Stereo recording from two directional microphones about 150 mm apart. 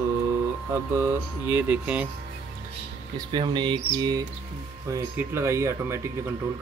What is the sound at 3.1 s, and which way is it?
Speech, 30° right (ahead or behind).